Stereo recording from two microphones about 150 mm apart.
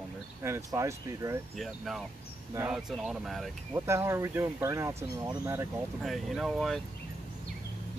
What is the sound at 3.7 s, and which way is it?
Speech, 15° right (ahead or behind).